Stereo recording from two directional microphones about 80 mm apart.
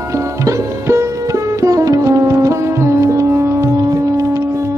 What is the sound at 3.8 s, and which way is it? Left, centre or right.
Music, right.